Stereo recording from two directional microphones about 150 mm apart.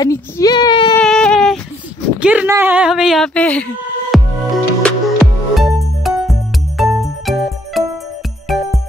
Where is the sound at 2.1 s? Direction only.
10° right (ahead or behind).